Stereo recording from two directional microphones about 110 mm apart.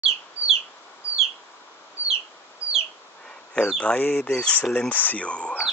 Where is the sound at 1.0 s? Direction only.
25° left (ahead or behind).